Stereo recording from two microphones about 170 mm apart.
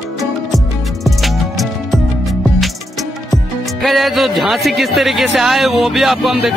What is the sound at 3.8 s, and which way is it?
A man's voice, centre (ahead or behind).